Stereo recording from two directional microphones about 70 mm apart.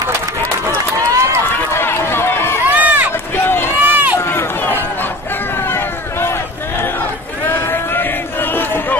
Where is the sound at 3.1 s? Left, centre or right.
Left.